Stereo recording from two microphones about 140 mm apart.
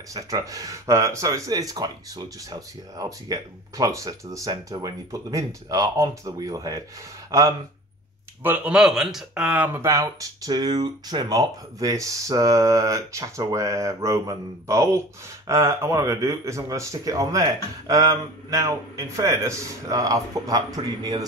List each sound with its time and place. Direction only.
0.1 s speech: 25° right (ahead or behind)
8.4 s speech: 10° right (ahead or behind); by 21.3 s 30° right (ahead or behind)